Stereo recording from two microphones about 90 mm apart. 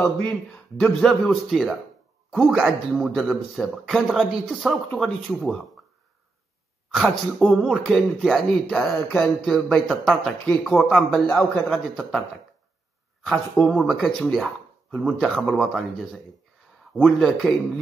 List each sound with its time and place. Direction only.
0.5 s speech: 5° left (ahead or behind)
6.9 s speech: 5° right (ahead or behind)
13.7 s speech: centre (ahead or behind)
16.9 s speech: centre (ahead or behind)